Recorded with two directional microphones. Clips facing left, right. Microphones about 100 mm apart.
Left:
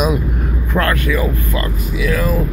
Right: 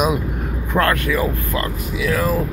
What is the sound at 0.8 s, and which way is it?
Speech, 30° right (ahead or behind).